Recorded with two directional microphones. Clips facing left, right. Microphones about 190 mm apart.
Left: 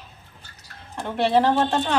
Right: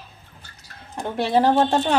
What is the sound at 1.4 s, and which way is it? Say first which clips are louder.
Speech: right 3 dB; 15° right (ahead or behind).